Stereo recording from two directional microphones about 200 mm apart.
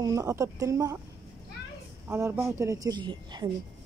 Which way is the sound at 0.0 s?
15° right (ahead or behind).